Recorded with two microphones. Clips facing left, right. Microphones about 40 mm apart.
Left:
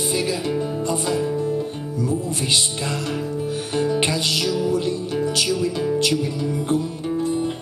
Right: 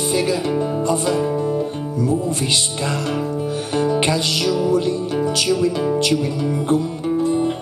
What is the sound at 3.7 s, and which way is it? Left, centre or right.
Music, centre.